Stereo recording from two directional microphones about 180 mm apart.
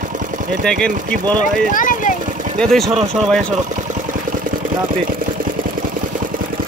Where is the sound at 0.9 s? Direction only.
45° right (ahead or behind).